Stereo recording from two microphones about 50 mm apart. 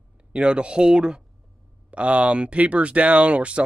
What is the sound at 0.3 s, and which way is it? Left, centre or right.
Speech, right.